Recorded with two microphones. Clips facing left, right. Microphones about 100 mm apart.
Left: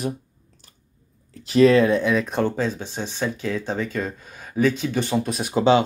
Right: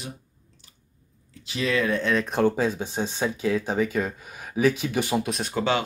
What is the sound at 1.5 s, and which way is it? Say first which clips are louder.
Speech: left 12 dB; 45° left (ahead or behind).